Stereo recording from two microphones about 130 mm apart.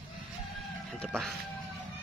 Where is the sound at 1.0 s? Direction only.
Centre (ahead or behind).